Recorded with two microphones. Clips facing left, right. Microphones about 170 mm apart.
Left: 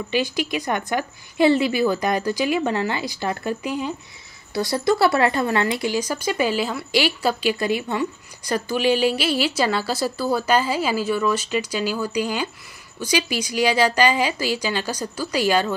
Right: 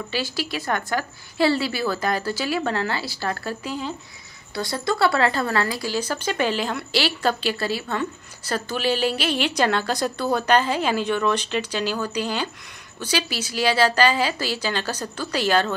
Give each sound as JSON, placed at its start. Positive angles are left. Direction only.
{"t": 0.1, "sound": "a woman's voice", "side_deg": 20}
{"t": 5.9, "sound": "a woman's voice", "side_deg": 10}